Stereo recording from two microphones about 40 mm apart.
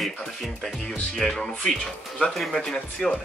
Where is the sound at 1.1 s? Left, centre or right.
Centre.